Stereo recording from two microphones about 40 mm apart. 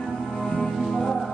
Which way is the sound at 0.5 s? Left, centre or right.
Centre.